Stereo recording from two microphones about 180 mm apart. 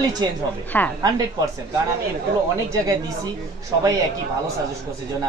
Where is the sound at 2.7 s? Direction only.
20° right (ahead or behind).